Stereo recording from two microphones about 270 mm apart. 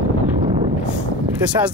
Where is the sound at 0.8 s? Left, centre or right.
Centre.